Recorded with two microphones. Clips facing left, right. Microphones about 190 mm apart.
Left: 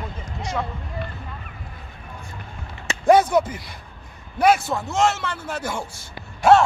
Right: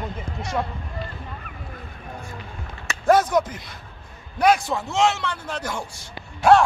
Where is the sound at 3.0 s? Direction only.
10° left (ahead or behind).